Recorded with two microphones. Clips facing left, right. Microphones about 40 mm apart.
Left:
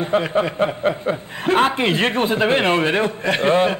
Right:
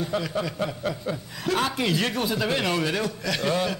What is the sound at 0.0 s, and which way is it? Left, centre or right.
Speech, left.